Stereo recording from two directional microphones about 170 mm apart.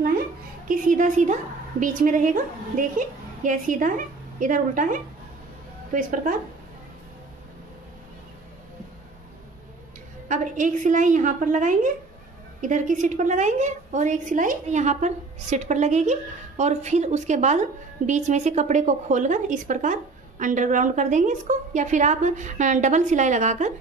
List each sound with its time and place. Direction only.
0.7 s a woman's voice: 50° right (ahead or behind)
10.2 s a woman's voice: 50° right (ahead or behind)